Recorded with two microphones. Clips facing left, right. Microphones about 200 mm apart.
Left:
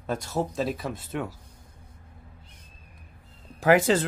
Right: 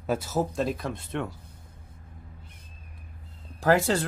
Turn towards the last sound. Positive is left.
turn(degrees=15)  # may be behind; listen again after turning